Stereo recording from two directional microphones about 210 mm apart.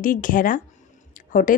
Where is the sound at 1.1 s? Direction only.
40° left (ahead or behind).